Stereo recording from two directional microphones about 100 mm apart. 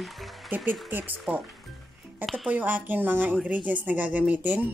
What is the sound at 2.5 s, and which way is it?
Speech, 20° right (ahead or behind).